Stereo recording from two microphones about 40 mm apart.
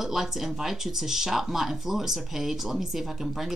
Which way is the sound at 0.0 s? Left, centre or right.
Centre.